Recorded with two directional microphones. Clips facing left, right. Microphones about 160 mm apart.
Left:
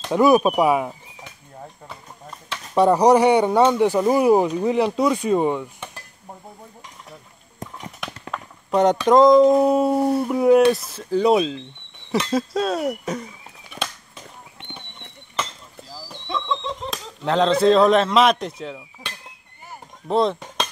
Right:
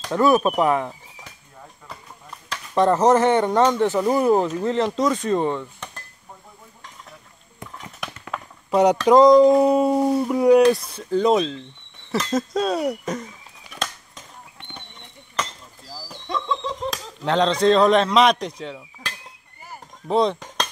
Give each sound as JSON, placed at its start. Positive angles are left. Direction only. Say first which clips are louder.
{"t": 0.0, "sound": "speech", "louder": "left 2 dB", "side_deg": 15}
{"t": 2.5, "sound": "speech", "louder": "left 2 dB", "side_deg": 10}
{"t": 8.0, "sound": "speech", "louder": "right 1 dB", "side_deg": -5}
{"t": 12.1, "sound": "a sound", "louder": "left 1 dB", "side_deg": 10}
{"t": 15.9, "sound": "a sound", "louder": "even", "side_deg": 0}
{"t": 19.6, "sound": "chop", "louder": "even", "side_deg": 0}